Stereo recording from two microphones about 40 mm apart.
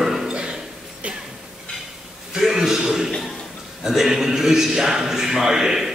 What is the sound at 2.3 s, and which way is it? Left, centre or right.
A man's voice, centre.